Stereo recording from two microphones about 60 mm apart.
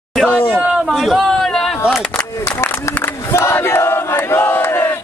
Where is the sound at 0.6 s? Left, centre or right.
Centre.